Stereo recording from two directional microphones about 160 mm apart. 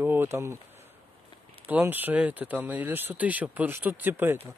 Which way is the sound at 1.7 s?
10° right (ahead or behind).